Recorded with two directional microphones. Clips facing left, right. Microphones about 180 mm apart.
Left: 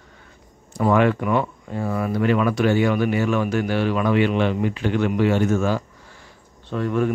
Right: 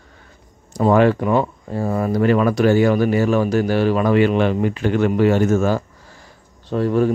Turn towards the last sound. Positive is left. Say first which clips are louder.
# right 4 dB
turn(degrees=-35)  # may be behind; listen again after turning